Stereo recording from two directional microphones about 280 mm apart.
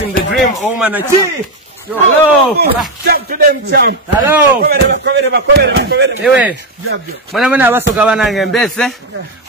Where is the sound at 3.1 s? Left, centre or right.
Right.